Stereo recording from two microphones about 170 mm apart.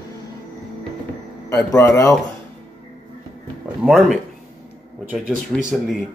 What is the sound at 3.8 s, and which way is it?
Speech, centre (ahead or behind).